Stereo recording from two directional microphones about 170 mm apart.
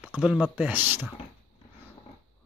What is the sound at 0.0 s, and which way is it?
Speech, 5° right (ahead or behind).